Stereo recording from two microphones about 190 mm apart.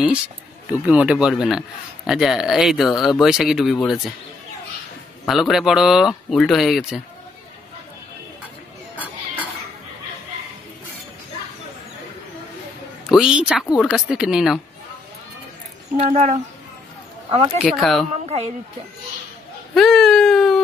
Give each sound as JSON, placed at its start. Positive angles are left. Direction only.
{"t": 0.7, "sound": "speech", "side_deg": -5}
{"t": 5.2, "sound": "speech", "side_deg": 0}
{"t": 8.9, "sound": "a sound", "side_deg": -10}
{"t": 13.1, "sound": "speech", "side_deg": -5}
{"t": 16.0, "sound": "speech", "side_deg": -40}
{"t": 17.3, "sound": "speech", "side_deg": -25}
{"t": 17.7, "sound": "speech", "side_deg": 0}
{"t": 18.2, "sound": "speech", "side_deg": -30}
{"t": 19.7, "sound": "whimper", "side_deg": 0}